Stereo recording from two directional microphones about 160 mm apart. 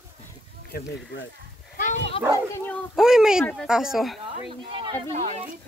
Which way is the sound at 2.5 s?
10° left (ahead or behind).